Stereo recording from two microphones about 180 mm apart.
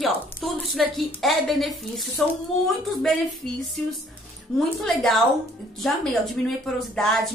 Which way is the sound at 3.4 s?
Centre (ahead or behind).